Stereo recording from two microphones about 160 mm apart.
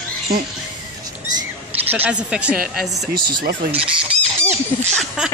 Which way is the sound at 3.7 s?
40° right (ahead or behind).